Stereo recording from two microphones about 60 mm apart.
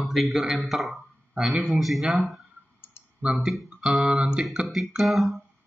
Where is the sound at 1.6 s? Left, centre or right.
Centre.